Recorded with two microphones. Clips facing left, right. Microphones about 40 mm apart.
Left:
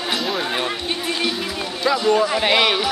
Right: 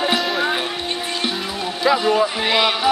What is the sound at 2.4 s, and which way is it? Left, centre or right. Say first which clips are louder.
Speech: left 1 dB; centre.